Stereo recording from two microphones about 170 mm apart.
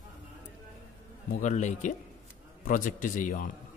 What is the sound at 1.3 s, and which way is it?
A man's voice, 45° left (ahead or behind).